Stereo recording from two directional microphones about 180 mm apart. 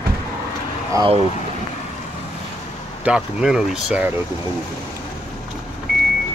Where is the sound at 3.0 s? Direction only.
5° right (ahead or behind).